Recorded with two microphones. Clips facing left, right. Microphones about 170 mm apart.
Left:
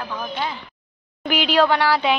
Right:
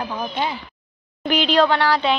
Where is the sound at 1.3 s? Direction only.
10° left (ahead or behind).